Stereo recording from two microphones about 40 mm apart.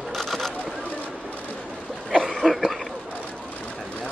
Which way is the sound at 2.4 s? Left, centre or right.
Centre.